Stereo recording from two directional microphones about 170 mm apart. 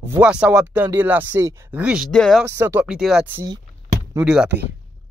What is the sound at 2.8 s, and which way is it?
Speech, 5° right (ahead or behind).